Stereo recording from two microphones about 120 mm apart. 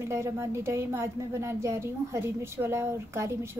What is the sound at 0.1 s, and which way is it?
A woman's voice, 25° right (ahead or behind).